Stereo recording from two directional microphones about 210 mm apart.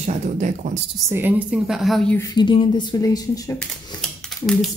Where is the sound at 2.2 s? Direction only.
20° left (ahead or behind).